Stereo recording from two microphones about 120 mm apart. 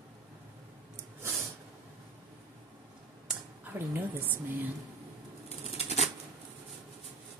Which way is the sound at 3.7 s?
15° right (ahead or behind).